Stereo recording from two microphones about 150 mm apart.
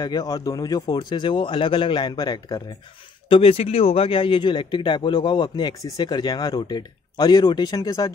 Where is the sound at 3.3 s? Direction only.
40° left (ahead or behind).